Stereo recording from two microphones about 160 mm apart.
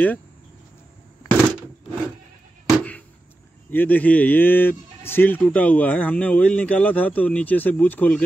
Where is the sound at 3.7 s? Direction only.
10° left (ahead or behind).